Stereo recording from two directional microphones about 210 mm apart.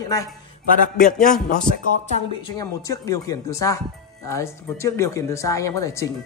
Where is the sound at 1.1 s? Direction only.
5° left (ahead or behind).